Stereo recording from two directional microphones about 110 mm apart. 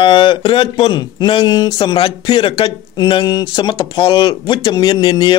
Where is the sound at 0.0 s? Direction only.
50° left (ahead or behind).